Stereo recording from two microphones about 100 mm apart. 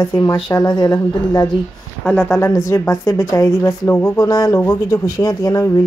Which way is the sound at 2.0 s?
10° left (ahead or behind).